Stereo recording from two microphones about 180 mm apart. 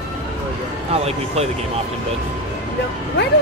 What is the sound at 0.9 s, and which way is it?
Speech, 35° right (ahead or behind).